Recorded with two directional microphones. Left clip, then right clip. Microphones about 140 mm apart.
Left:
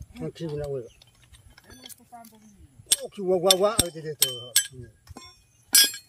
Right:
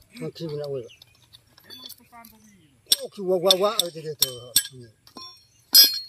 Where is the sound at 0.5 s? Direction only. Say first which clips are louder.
Right 1 dB; 5° left (ahead or behind).